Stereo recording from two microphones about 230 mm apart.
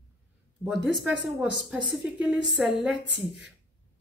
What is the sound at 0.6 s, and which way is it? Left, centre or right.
Speech, centre.